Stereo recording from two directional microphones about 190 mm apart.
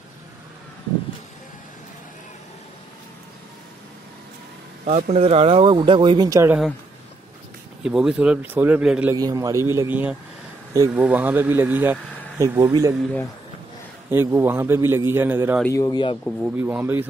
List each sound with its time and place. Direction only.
5.1 s speech: 30° right (ahead or behind); by 6.6 s 15° right (ahead or behind)
7.8 s speech: centre (ahead or behind)
9.1 s a man's voice: 20° right (ahead or behind)
14.1 s a man's voice: 10° right (ahead or behind)
15.6 s speech: 15° left (ahead or behind)
16.3 s speech: 5° left (ahead or behind)
16.5 s a man's voice: 10° right (ahead or behind)